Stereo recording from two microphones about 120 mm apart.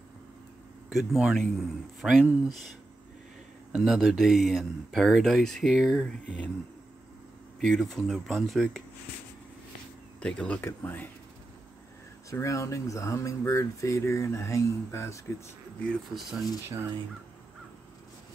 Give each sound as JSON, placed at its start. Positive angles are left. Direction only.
{"t": 0.8, "sound": "speech", "side_deg": -5}
{"t": 3.7, "sound": "speech", "side_deg": 0}
{"t": 7.6, "sound": "speech", "side_deg": 5}
{"t": 10.2, "sound": "speech", "side_deg": 10}
{"t": 12.3, "sound": "speech", "side_deg": 25}
{"t": 16.2, "sound": "speech", "side_deg": 0}